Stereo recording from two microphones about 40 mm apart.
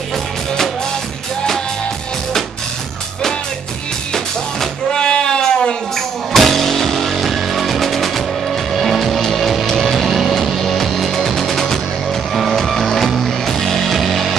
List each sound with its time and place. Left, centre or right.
4.1 s music: centre
5.9 s music: centre